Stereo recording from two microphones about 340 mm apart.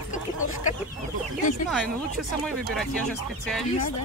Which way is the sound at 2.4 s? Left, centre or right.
Centre.